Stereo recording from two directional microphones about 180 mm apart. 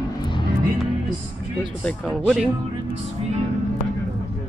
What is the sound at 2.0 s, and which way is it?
Speech, 5° right (ahead or behind).